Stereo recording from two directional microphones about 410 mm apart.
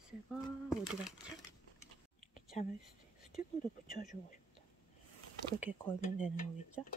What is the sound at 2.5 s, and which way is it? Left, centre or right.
Speech, centre.